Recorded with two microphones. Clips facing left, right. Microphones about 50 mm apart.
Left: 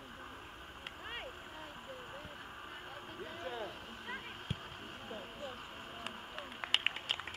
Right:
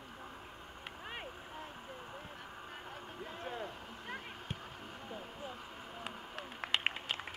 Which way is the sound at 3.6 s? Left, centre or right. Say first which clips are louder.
Even; left.